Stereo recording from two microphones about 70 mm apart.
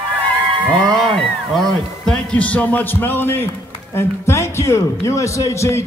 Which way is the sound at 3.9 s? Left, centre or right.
Left.